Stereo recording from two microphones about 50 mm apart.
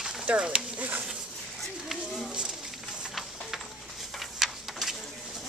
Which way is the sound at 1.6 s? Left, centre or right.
Centre.